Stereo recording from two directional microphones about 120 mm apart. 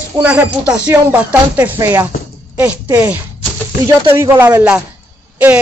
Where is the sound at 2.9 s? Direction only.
10° right (ahead or behind).